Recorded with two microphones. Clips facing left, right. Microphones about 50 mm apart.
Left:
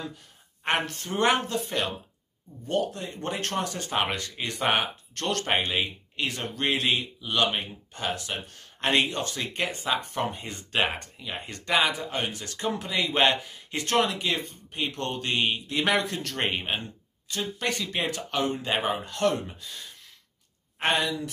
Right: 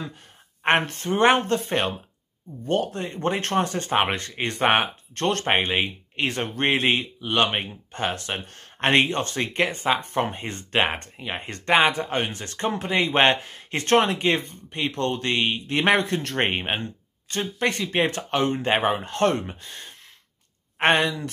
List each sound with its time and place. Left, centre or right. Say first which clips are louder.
0.7 s speech: right 6 dB; right